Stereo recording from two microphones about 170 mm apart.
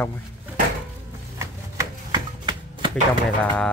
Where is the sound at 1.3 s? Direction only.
20° right (ahead or behind).